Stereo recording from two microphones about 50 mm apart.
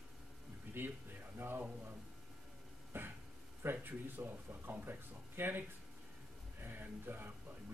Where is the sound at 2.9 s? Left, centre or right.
Right.